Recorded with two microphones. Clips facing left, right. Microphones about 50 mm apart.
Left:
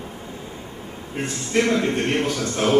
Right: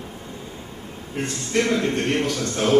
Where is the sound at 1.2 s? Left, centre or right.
Centre.